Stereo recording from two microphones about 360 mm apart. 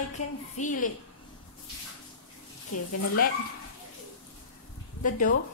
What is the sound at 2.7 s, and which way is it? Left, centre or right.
Speech, left.